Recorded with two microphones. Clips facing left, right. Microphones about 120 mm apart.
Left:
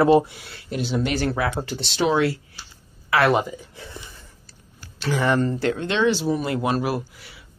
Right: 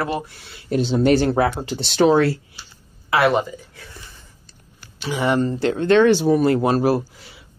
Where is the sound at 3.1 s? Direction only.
25° right (ahead or behind).